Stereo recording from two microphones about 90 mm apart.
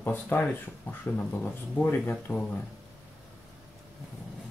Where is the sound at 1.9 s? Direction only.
25° left (ahead or behind).